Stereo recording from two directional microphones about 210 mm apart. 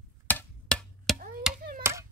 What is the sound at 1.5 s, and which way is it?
Chop, 5° right (ahead or behind).